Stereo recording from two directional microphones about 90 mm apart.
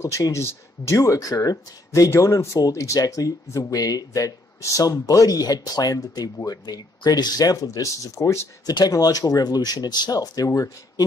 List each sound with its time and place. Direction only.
0.0 s speech: 35° left (ahead or behind)
8.6 s speech: 45° left (ahead or behind)